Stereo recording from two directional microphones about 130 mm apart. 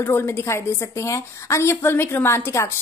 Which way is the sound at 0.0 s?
20° left (ahead or behind).